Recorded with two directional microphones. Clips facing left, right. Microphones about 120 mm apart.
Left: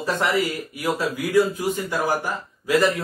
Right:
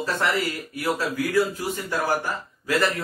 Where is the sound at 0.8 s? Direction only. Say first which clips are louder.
Even; 15° left (ahead or behind).